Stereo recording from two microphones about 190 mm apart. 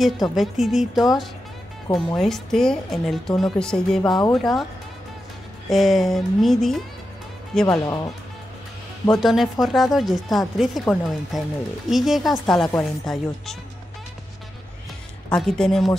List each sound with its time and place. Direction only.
0.0 s speech: centre (ahead or behind)
4.0 s speech: 20° left (ahead or behind)
4.3 s speech: centre (ahead or behind)
5.7 s speech: centre (ahead or behind)
7.6 s speech: 15° left (ahead or behind)
9.1 s speech: centre (ahead or behind)
15.2 s speech: 5° left (ahead or behind)